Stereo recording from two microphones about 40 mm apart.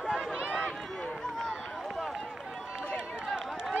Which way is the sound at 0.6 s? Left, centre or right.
Centre.